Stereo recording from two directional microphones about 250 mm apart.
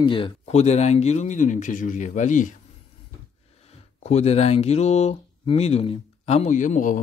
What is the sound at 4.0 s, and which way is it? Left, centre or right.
Speech, left.